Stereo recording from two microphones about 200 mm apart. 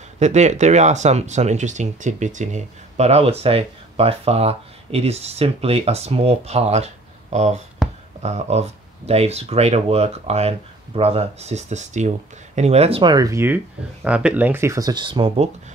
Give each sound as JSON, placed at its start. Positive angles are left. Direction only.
{"t": 0.2, "sound": "speech", "side_deg": -35}